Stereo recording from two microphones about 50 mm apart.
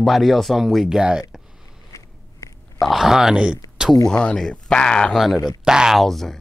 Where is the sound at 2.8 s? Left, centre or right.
Centre.